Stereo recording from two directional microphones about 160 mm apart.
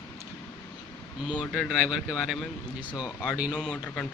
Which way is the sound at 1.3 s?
5° left (ahead or behind).